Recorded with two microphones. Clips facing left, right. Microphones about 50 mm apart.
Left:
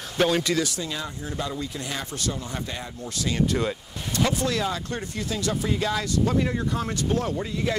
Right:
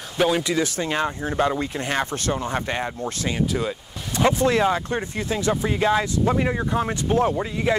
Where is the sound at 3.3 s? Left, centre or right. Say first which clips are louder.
Left 1 dB; centre.